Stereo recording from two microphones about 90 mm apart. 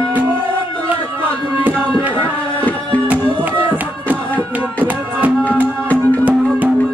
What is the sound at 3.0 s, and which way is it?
Music, 20° right (ahead or behind).